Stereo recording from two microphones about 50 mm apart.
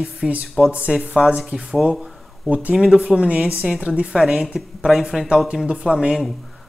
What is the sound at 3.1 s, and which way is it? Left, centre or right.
Speech, right.